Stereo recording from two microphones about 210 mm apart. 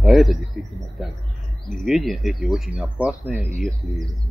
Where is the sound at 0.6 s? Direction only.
40° left (ahead or behind).